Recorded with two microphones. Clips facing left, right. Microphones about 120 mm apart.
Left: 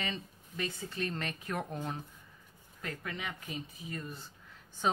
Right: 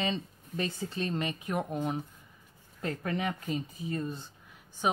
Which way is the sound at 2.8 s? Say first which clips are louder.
Right 8 dB; 35° right (ahead or behind).